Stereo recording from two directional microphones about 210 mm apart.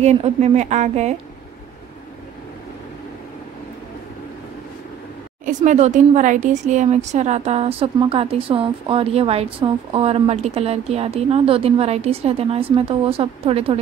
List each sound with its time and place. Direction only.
0.0 s a woman's voice: 30° right (ahead or behind)
5.4 s speech: 35° right (ahead or behind)